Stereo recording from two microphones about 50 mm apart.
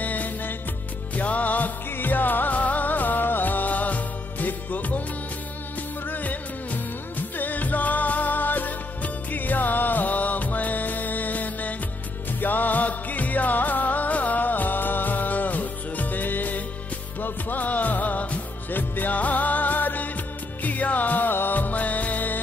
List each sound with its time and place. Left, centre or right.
0.0 s music: left
6.0 s music of bollywood: left
12.3 s music: left